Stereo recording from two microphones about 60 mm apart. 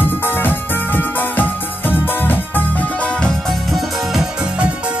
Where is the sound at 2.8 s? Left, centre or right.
Left.